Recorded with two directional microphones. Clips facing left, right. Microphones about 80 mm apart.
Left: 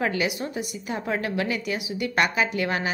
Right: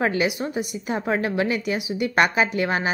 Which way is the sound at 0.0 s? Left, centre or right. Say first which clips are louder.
Right 3 dB; right.